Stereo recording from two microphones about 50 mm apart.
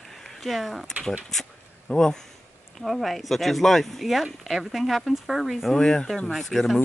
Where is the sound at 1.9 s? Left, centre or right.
Centre.